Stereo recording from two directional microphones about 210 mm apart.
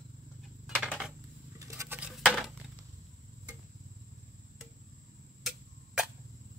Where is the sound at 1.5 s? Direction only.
15° right (ahead or behind).